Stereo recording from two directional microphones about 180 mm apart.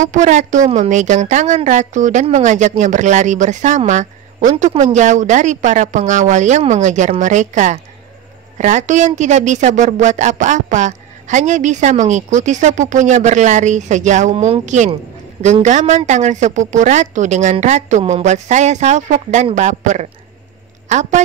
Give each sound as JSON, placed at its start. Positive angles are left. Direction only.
{"t": 0.0, "sound": "a woman's voice", "side_deg": -45}